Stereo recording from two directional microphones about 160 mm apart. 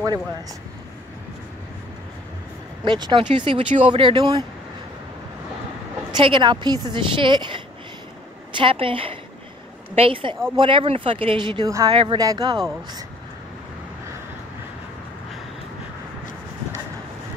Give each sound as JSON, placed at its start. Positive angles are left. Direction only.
{"t": 2.8, "sound": "speech", "side_deg": -30}
{"t": 6.1, "sound": "a woman's voice", "side_deg": -30}
{"t": 11.9, "sound": "speech", "side_deg": -35}
{"t": 12.2, "sound": "a woman's voice", "side_deg": -25}